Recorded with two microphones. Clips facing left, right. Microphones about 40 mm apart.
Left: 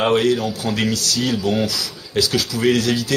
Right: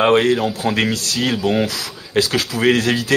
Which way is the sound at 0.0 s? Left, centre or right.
Right.